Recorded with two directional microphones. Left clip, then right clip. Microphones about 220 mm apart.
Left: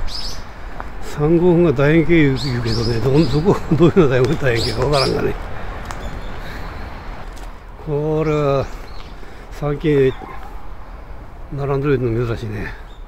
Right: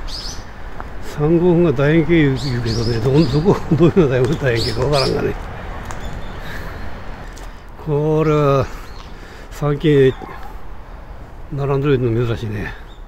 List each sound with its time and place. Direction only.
1.0 s speech: 10° left (ahead or behind)
7.9 s mantra: 25° right (ahead or behind)
11.5 s a man's voice: 10° right (ahead or behind)